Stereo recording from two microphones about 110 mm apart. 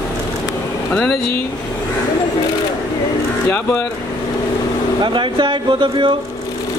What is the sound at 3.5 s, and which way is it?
Speech, 10° left (ahead or behind).